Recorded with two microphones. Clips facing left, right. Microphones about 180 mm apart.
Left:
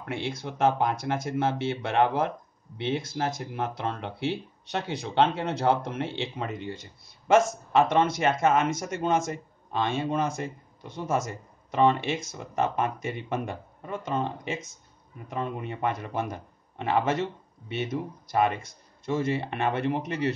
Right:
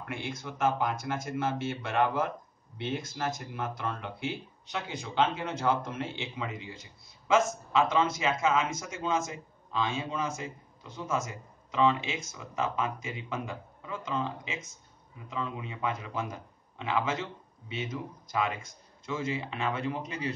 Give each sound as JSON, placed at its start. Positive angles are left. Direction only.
{"t": 0.1, "sound": "a man's voice", "side_deg": 70}
{"t": 15.2, "sound": "a man's voice", "side_deg": 60}